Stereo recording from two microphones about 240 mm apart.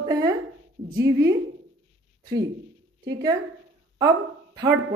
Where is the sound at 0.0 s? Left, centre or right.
Centre.